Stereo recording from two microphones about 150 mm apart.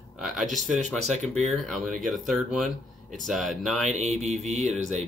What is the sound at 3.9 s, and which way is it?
Speech, 50° right (ahead or behind).